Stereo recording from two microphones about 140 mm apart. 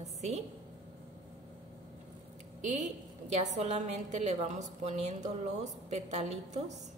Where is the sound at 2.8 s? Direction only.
50° right (ahead or behind).